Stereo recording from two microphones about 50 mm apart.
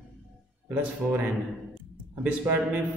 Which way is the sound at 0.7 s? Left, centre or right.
Right.